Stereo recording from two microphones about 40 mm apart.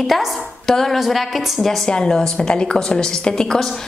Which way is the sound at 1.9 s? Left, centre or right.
Centre.